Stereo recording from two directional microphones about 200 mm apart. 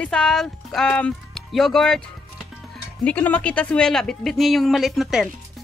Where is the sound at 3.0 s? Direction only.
5° left (ahead or behind).